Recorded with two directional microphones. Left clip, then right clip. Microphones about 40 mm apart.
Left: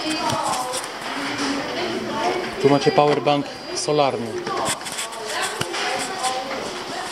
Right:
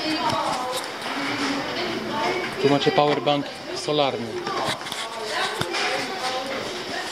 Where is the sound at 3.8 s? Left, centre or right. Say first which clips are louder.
Left 3 dB; left.